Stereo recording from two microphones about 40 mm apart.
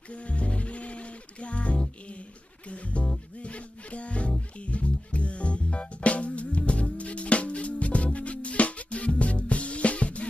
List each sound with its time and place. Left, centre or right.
0.1 s music: left